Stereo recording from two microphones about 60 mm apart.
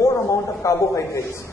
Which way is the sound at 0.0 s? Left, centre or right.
Left.